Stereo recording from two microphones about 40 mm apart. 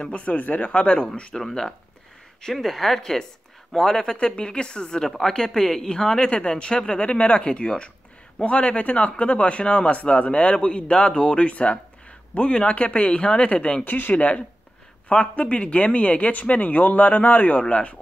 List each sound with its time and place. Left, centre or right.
0.0 s speech: left
1.3 s speech: centre; by 13.7 s left
13.8 s speech: left